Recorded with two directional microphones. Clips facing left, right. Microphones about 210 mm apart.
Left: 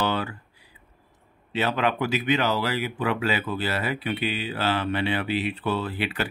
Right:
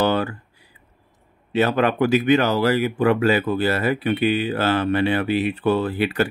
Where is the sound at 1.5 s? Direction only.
45° right (ahead or behind).